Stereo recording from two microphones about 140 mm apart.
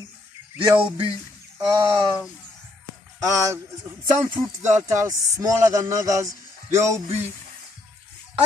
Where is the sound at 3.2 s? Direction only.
20° right (ahead or behind).